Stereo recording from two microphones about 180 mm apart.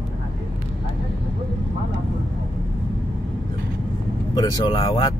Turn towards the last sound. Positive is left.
turn(degrees=25)  # may be behind; listen again after turning